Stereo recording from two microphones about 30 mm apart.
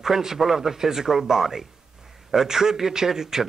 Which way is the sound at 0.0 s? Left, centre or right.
Centre.